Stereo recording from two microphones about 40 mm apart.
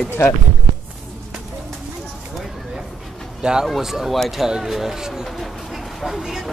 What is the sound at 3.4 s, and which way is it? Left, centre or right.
Speech, centre.